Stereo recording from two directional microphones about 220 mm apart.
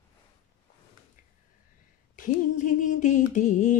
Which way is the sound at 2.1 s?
35° left (ahead or behind).